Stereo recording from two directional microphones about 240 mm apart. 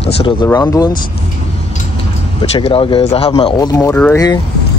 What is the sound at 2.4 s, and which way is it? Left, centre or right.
Speech, left.